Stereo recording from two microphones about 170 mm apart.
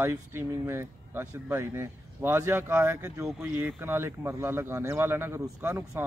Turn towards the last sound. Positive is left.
turn(degrees=-15)  # may be behind; listen again after turning